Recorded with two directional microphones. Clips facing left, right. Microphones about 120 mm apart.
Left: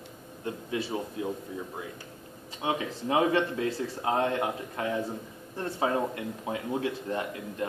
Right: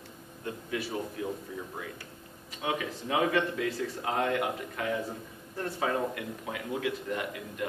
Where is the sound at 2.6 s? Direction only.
25° left (ahead or behind).